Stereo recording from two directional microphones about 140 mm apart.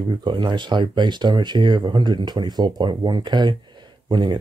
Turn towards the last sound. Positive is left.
turn(degrees=-30)  # may be behind; listen again after turning